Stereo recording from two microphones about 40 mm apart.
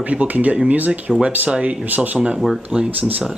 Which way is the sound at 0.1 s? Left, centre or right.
Right.